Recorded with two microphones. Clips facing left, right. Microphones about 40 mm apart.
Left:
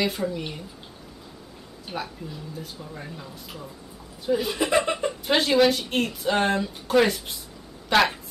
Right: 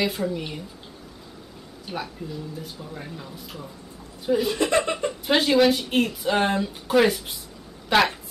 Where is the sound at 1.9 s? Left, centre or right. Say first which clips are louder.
Right 1 dB; centre.